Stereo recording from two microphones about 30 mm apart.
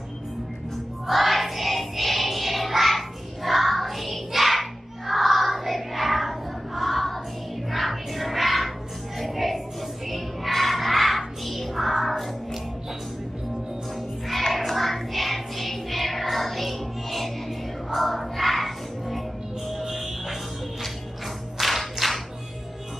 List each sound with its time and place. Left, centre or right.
1.0 s music: centre
10.0 s a sound: centre
14.7 s music: centre
21.5 s music: centre